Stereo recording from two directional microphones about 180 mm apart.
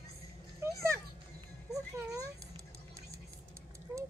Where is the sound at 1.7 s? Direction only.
20° right (ahead or behind).